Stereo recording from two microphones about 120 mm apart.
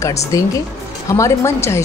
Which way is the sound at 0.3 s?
30° left (ahead or behind).